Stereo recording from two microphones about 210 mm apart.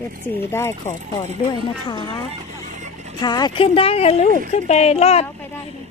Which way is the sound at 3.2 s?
20° left (ahead or behind).